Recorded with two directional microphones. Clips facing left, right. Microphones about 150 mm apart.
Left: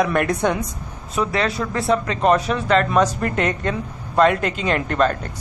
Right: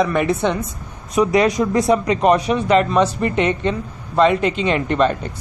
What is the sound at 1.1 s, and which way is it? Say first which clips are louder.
A woman's voice: right 6 dB; 10° right (ahead or behind).